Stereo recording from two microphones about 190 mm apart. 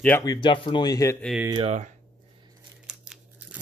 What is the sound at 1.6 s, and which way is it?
Speech, 35° right (ahead or behind).